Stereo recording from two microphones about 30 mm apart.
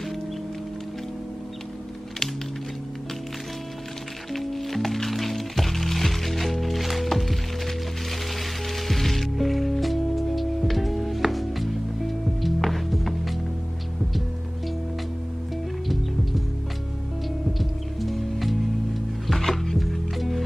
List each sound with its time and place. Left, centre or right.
4.3 s music: centre
17.6 s music: centre
19.8 s music: centre